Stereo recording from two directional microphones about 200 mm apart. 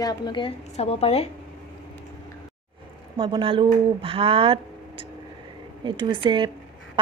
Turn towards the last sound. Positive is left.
turn(degrees=-25)  # may be behind; listen again after turning